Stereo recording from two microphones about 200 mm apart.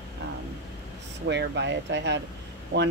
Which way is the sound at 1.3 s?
60° right (ahead or behind).